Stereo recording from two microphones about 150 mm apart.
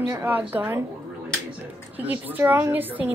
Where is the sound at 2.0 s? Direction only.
15° right (ahead or behind).